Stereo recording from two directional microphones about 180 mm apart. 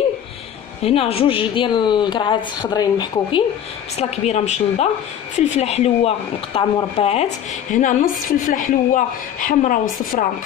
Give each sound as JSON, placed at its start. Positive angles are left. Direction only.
{"t": 0.8, "sound": "a woman's voice", "side_deg": 35}
{"t": 3.9, "sound": "speech", "side_deg": 35}